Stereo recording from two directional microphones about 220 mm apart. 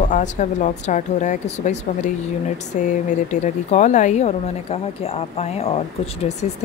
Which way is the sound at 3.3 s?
30° left (ahead or behind).